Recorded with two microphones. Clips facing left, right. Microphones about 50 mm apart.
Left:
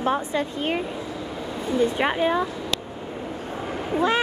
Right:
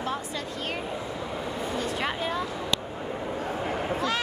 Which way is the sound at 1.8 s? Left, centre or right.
Left.